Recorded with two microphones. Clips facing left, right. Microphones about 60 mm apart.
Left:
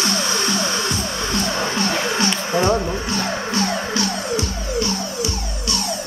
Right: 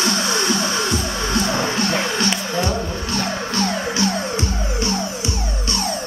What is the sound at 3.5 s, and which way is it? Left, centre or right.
Music, centre.